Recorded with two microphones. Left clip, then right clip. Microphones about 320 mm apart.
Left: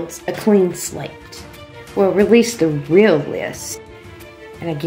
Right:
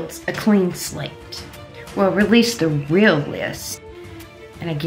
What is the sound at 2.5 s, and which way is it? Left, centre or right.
Speech, right.